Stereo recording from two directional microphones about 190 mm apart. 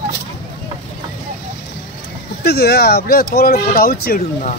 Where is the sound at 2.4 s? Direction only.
55° left (ahead or behind).